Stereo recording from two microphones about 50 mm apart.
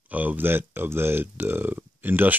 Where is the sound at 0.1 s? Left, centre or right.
Right.